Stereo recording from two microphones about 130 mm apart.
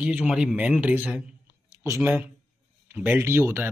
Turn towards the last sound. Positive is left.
turn(degrees=-15)  # may be behind; listen again after turning